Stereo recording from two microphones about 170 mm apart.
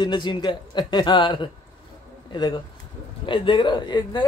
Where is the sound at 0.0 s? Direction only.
25° left (ahead or behind).